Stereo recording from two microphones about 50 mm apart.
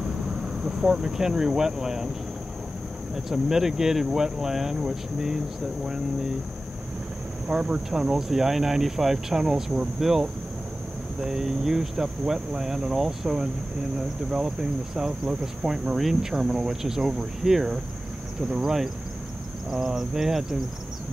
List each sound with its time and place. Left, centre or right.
0.7 s speech: centre
3.3 s speech: centre
7.4 s insect: centre
8.0 s speech: centre